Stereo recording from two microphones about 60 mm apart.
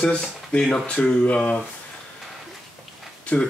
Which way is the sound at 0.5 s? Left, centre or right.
Centre.